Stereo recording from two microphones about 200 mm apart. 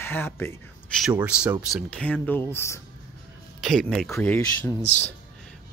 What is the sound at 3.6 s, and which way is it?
Speech, centre (ahead or behind).